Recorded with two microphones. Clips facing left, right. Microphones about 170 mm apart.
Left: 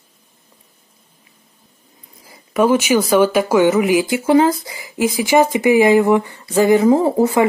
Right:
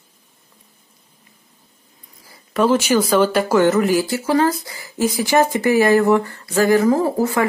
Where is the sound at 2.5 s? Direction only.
10° left (ahead or behind).